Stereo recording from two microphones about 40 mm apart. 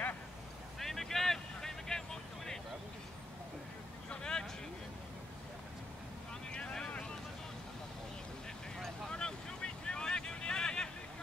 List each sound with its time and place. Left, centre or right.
0.7 s vehicle: centre
4.1 s vehicle: centre
6.5 s boat: centre
9.1 s vehicle: left